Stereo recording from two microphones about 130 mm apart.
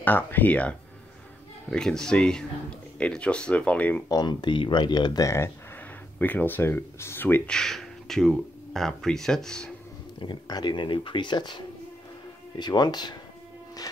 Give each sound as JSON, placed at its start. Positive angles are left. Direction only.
{"t": 0.0, "sound": "speech", "side_deg": 15}
{"t": 4.1, "sound": "speech", "side_deg": 30}
{"t": 7.5, "sound": "speech", "side_deg": 5}
{"t": 10.2, "sound": "speech", "side_deg": 35}